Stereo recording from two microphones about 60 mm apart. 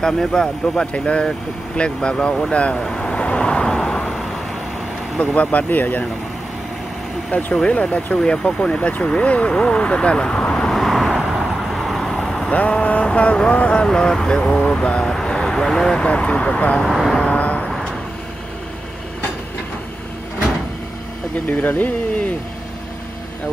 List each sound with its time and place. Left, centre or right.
0.0 s speech: centre
2.5 s vehicle: centre
5.2 s speech: left
7.5 s speech: centre
10.7 s vehicle: centre
12.4 s speech: centre
16.8 s speech: centre
17.2 s vehicle: left
17.6 s vehicle: centre
21.5 s speech: left